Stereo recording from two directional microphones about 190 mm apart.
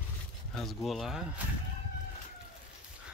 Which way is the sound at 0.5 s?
Centre (ahead or behind).